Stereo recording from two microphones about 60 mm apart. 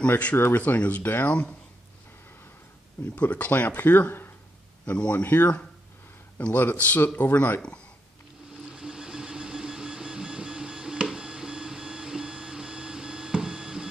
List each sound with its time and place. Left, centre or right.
0.1 s speech: left
1.0 s speech: left
3.2 s speech: left
4.8 s speech: left
8.7 s printer: centre